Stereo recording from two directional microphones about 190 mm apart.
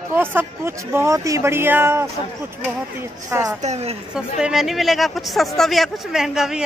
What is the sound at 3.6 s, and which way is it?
Speech, 35° right (ahead or behind).